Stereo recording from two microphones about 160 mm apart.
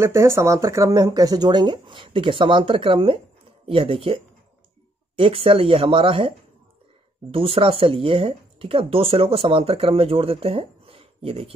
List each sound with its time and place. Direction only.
0.0 s speech: 15° right (ahead or behind); by 11.5 s 35° right (ahead or behind)